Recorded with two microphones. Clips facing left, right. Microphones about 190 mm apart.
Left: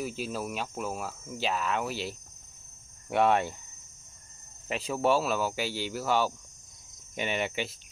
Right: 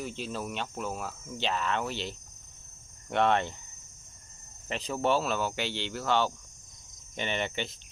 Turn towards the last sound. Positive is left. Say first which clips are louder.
# left 1 dB
turn(degrees=5)  # may be behind; listen again after turning